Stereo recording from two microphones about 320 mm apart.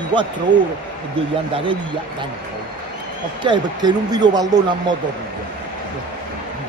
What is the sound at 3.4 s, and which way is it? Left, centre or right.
Speech, centre.